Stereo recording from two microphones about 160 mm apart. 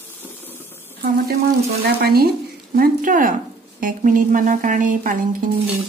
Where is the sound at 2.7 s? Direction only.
60° right (ahead or behind).